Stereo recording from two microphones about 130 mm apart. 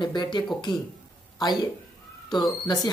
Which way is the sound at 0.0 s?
35° left (ahead or behind).